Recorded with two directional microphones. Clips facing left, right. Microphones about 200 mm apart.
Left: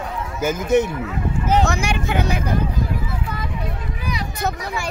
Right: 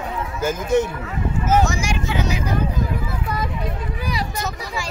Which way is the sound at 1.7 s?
60° left (ahead or behind).